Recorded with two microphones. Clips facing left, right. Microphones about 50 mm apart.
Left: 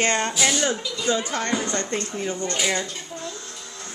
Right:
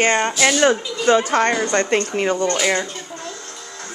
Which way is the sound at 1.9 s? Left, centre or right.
Right.